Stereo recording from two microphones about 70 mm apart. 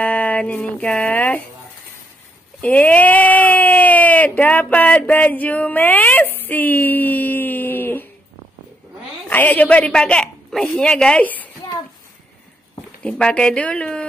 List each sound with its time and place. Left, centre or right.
0.0 s a sound: left
1.0 s speech: left
2.6 s speech: left
9.3 s a woman's voice: left
11.2 s a woman's voice: left
13.0 s speech: centre